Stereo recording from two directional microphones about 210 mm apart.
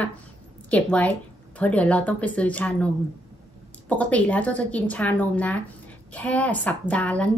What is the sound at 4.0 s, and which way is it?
A woman's voice, 5° left (ahead or behind).